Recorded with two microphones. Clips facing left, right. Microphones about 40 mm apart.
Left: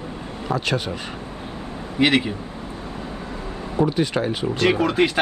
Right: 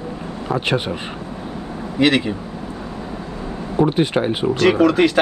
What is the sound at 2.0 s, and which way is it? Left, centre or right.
Speech, centre.